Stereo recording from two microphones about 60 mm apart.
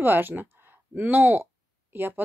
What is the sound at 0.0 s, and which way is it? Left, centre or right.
Speech, right.